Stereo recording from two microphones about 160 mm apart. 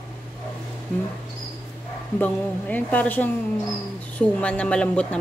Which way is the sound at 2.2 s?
10° left (ahead or behind).